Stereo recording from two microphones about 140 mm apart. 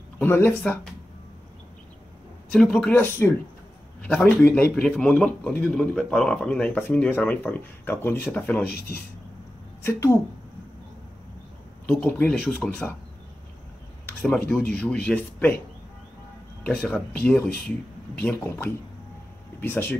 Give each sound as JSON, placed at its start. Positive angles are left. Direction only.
{"t": 0.2, "sound": "speech", "side_deg": 15}
{"t": 2.5, "sound": "speech", "side_deg": 5}
{"t": 2.9, "sound": "speech", "side_deg": 15}
{"t": 8.6, "sound": "speech", "side_deg": 90}
{"t": 9.8, "sound": "speech", "side_deg": 20}
{"t": 11.9, "sound": "speech", "side_deg": 10}
{"t": 14.2, "sound": "speech", "side_deg": 5}
{"t": 16.6, "sound": "speech", "side_deg": 10}
{"t": 17.5, "sound": "speech", "side_deg": 90}
{"t": 18.2, "sound": "speech", "side_deg": 15}